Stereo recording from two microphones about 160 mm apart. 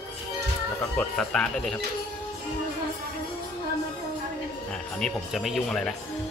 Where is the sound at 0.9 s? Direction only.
5° left (ahead or behind).